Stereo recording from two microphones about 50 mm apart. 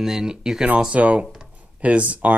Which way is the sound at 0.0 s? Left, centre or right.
Centre.